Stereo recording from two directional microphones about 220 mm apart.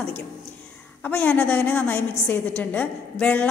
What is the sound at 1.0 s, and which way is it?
A woman's voice, 5° left (ahead or behind).